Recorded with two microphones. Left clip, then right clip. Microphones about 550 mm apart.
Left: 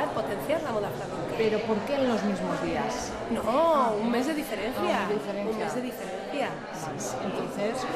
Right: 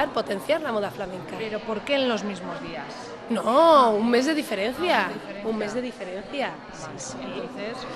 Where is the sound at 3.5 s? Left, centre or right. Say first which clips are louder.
Right 7 dB; right.